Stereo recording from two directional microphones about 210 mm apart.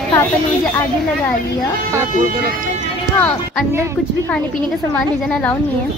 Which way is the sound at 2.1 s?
40° right (ahead or behind).